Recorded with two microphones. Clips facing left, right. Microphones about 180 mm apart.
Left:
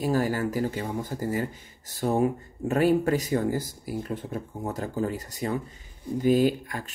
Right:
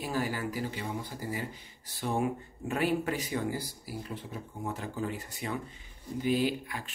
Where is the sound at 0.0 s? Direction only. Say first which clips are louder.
Left 7 dB; 40° left (ahead or behind).